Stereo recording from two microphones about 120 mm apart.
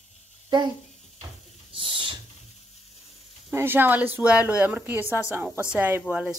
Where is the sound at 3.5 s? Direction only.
20° right (ahead or behind).